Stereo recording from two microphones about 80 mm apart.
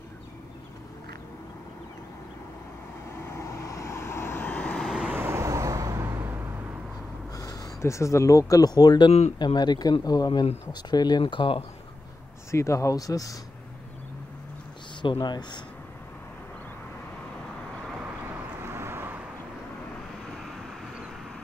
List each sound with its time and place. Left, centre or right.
3.3 s vehicle: left; by 4.8 s centre
4.8 s vehicle: centre
5.1 s vehicle: right
6.0 s vehicle: right
7.3 s speech: left
12.4 s speech: left
15.1 s speech: left
18.6 s vehicle: right
20.4 s vehicle: centre